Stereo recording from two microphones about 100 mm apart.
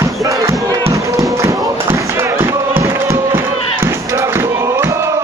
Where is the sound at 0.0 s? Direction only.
35° right (ahead or behind).